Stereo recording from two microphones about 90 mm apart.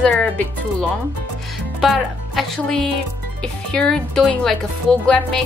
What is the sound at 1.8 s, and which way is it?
A woman's voice, centre (ahead or behind).